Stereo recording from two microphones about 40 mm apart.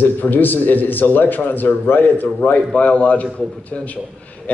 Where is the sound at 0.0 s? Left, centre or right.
Left.